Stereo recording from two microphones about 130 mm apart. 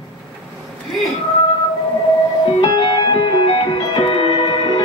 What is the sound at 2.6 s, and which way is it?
Music, 35° left (ahead or behind).